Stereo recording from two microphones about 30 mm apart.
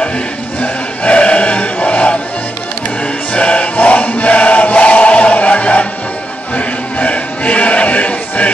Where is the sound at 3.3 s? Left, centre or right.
Left.